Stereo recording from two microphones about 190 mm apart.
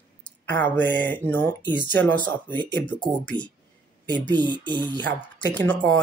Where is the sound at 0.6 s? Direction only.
10° left (ahead or behind).